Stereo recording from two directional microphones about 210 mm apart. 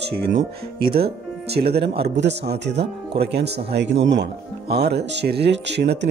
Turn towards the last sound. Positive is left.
turn(degrees=-55)  # may be behind; listen again after turning